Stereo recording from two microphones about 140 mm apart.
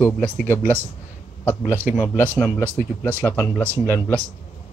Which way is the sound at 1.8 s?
15° right (ahead or behind).